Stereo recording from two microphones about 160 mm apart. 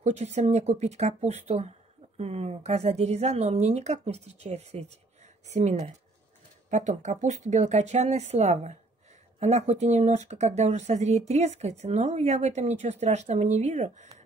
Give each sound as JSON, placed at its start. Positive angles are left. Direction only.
{"t": 0.0, "sound": "speech", "side_deg": -45}